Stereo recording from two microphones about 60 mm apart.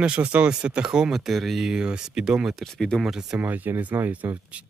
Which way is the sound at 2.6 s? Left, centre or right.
Centre.